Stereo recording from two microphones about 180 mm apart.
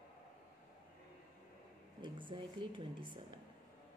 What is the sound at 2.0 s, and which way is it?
A woman's voice, 25° right (ahead or behind).